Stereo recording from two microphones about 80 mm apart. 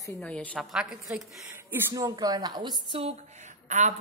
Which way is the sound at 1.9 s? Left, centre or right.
Right.